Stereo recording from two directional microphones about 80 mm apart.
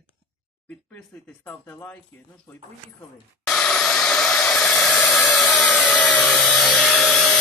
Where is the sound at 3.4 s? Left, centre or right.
Centre.